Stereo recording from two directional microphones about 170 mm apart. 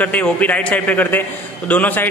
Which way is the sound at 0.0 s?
10° left (ahead or behind).